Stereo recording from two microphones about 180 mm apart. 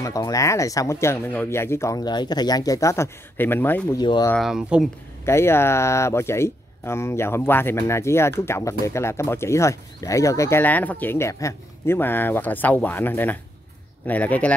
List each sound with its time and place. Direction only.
0.0 s speech: 20° left (ahead or behind)
4.0 s speech: 25° left (ahead or behind)
4.4 s speech: 5° right (ahead or behind)
5.2 s speech: 15° left (ahead or behind)